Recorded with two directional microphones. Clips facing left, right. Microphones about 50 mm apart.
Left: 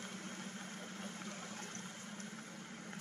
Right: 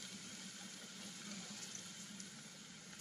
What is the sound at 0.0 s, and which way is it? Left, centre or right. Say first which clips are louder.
Vehicle: left 7 dB; left.